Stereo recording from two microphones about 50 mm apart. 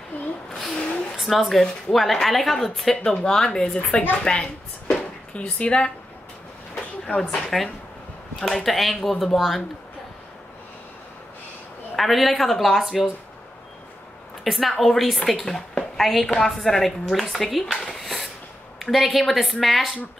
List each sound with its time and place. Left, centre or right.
0.1 s a sound: left
1.1 s a woman's voice: centre
3.0 s speech: centre
4.2 s a sound: centre
8.4 s a woman's voice: centre
11.9 s a woman's voice: centre
14.4 s a woman's voice: centre
17.8 s wheeze: centre
18.8 s a woman's voice: centre